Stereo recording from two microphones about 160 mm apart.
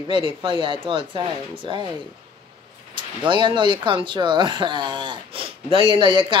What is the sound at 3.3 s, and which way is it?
Speech, 30° right (ahead or behind).